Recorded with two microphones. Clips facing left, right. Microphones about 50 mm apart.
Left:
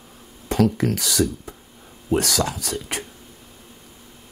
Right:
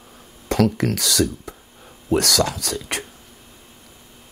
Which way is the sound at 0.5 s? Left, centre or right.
Right.